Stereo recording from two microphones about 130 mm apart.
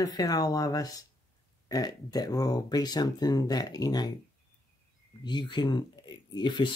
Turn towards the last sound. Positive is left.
turn(degrees=35)  # may be behind; listen again after turning